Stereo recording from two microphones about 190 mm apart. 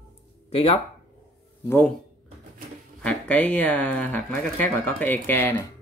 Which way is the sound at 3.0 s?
5° left (ahead or behind).